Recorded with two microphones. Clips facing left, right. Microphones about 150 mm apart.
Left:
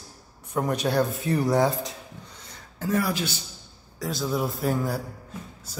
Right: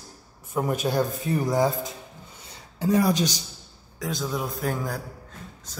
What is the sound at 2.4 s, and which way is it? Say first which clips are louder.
Speech: right 5 dB; 10° right (ahead or behind).